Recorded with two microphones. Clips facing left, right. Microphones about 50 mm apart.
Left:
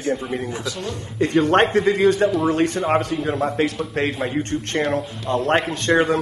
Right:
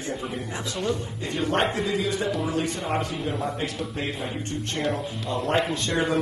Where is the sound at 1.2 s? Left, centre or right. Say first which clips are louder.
Left 12 dB; left.